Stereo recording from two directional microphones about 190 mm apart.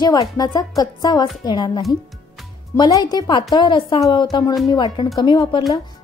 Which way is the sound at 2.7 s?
20° left (ahead or behind).